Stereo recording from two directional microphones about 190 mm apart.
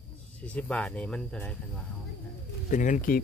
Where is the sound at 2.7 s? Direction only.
40° left (ahead or behind).